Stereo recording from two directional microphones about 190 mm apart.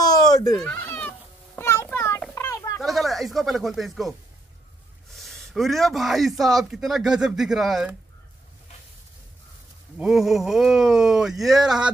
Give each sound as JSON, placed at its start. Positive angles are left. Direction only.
{"t": 0.3, "sound": "bleat", "side_deg": 20}
{"t": 0.6, "sound": "a sound", "side_deg": 5}
{"t": 2.8, "sound": "speech", "side_deg": 0}
{"t": 5.1, "sound": "a man's voice", "side_deg": 0}
{"t": 9.9, "sound": "a man's voice", "side_deg": -5}